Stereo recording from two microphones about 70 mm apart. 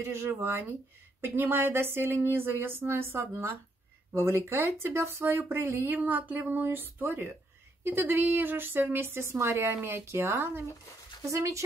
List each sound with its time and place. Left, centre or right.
0.0 s a woman's voice: right
11.2 s speech: right